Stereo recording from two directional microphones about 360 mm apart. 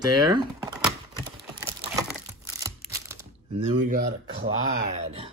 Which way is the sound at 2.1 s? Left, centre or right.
Centre.